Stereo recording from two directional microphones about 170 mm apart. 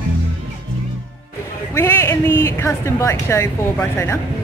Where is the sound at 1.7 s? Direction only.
15° left (ahead or behind).